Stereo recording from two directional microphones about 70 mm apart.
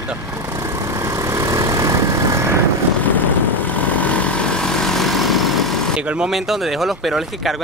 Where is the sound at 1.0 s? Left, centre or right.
Right.